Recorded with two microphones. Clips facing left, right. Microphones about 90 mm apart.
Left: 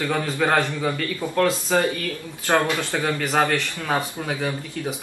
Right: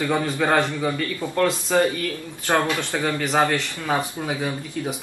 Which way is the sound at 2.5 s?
20° right (ahead or behind).